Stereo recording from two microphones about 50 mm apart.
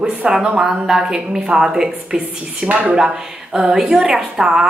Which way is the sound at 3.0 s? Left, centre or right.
Centre.